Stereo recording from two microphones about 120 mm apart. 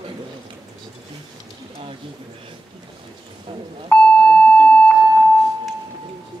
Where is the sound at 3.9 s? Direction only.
10° left (ahead or behind).